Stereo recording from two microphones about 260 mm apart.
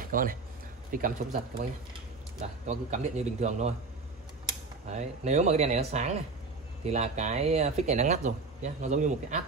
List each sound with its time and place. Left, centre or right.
0.0 s speech: right
4.8 s speech: right